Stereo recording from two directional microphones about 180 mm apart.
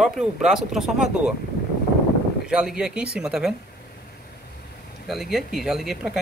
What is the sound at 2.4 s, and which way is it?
Speech, 5° right (ahead or behind).